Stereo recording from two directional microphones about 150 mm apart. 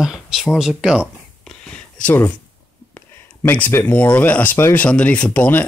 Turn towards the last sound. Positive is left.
turn(degrees=10)  # may be behind; listen again after turning